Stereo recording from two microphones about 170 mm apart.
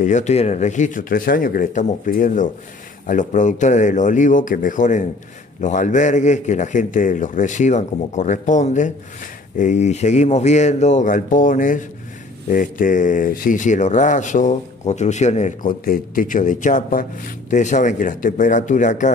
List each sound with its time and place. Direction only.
0.0 s speech: 45° left (ahead or behind)